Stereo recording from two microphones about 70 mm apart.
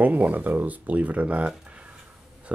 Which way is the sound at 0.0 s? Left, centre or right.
Right.